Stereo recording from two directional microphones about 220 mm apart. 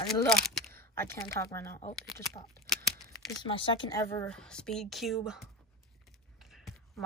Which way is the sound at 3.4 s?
25° left (ahead or behind).